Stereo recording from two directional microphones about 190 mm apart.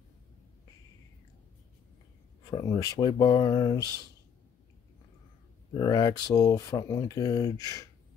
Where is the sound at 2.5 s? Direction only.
20° left (ahead or behind).